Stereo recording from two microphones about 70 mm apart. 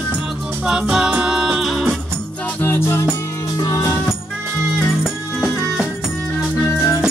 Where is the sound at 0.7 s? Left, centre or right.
Centre.